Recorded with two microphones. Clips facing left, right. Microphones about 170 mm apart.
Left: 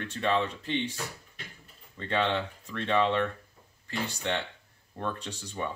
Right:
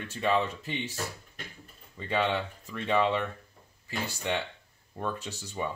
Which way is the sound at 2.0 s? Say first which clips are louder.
Even; 5° right (ahead or behind).